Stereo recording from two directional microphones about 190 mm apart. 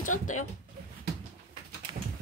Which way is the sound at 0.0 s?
40° left (ahead or behind).